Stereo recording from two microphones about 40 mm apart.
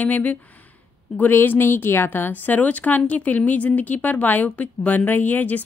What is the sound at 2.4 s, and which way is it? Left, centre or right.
A woman's voice, left.